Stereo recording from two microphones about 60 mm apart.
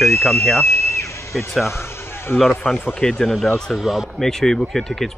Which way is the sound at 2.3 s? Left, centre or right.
Centre.